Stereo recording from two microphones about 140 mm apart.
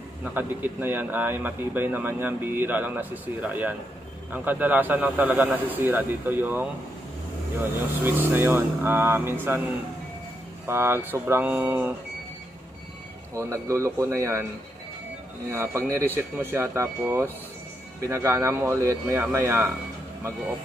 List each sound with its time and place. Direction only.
0.2 s speech: 15° right (ahead or behind)
8.0 s speech: 15° right (ahead or behind)
10.7 s speech: 15° right (ahead or behind)
13.3 s speech: 20° right (ahead or behind)
15.5 s speech: 20° right (ahead or behind)